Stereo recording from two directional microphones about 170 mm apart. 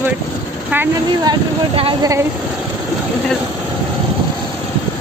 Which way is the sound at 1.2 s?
25° right (ahead or behind).